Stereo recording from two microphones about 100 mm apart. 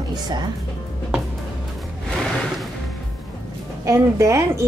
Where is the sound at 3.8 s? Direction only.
30° right (ahead or behind).